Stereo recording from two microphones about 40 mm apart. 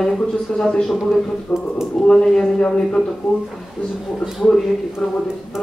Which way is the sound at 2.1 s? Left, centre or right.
Centre.